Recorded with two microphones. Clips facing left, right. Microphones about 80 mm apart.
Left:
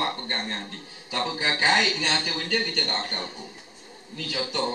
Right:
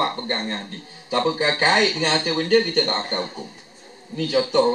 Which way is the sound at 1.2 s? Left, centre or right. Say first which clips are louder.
Right 4 dB; right.